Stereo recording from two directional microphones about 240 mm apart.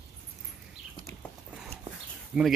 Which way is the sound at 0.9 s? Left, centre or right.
Centre.